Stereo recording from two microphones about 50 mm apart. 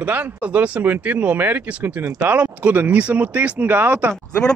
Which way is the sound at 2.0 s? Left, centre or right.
Right.